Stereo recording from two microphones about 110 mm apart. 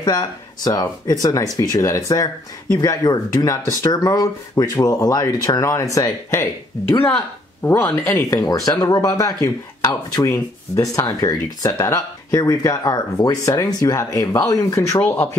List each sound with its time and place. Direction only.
0.0 s speech: 35° left (ahead or behind); by 8.3 s 20° left (ahead or behind)
8.5 s speech: 35° left (ahead or behind)